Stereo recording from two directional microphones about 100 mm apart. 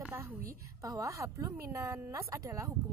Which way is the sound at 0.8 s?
30° right (ahead or behind).